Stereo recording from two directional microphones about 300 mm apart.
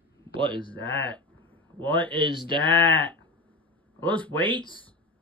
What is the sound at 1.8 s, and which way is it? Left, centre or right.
Speech, centre.